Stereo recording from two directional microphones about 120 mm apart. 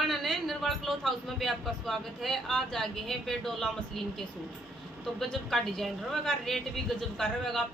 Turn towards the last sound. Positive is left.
turn(degrees=5)  # may be behind; listen again after turning